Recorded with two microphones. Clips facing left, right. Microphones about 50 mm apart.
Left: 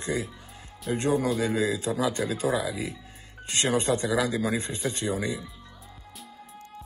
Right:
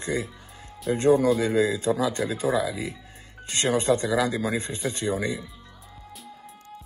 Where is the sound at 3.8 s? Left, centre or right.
Right.